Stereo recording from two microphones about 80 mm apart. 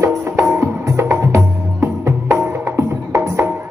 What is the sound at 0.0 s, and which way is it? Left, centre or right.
Music, right.